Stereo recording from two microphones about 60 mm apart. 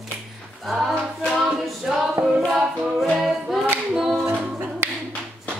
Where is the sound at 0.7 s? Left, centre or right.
Centre.